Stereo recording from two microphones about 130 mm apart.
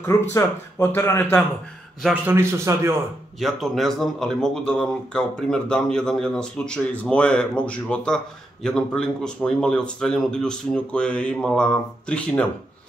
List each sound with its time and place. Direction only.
0.0 s speech: 20° left (ahead or behind)
2.2 s a man's voice: 20° right (ahead or behind)
3.3 s speech: centre (ahead or behind)